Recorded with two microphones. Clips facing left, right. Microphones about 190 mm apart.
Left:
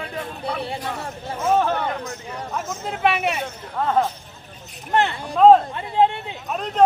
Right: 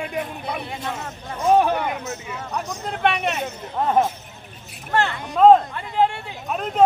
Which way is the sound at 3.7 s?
20° right (ahead or behind).